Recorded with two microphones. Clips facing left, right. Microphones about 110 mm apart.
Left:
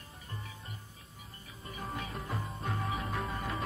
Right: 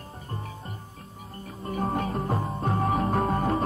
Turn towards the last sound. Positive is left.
turn(degrees=-45)  # may be behind; listen again after turning